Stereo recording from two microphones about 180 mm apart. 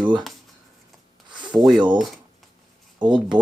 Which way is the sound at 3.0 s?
25° right (ahead or behind).